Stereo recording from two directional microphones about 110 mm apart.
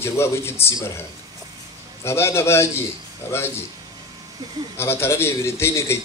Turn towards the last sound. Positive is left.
turn(degrees=25)  # may be behind; listen again after turning